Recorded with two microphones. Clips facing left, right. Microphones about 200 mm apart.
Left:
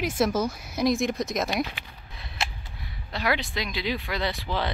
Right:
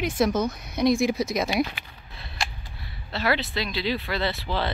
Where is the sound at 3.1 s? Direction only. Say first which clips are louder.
Right 2 dB; 15° left (ahead or behind).